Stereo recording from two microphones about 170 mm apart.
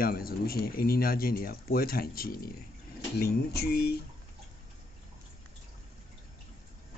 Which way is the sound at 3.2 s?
70° left (ahead or behind).